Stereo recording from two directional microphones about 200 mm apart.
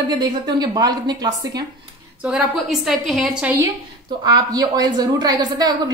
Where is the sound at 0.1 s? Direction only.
20° right (ahead or behind).